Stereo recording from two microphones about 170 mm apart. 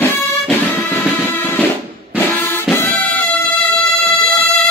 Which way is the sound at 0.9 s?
10° left (ahead or behind).